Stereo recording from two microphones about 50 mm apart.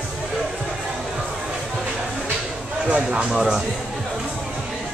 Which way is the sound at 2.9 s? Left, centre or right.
Right.